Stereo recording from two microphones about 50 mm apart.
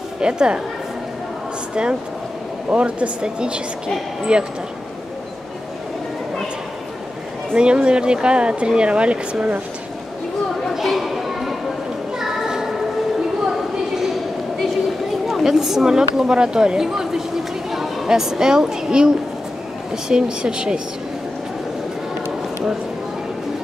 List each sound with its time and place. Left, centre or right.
0.2 s speech: centre
2.7 s speech: right
7.5 s speech: centre
10.7 s children playing: centre
15.2 s speech: centre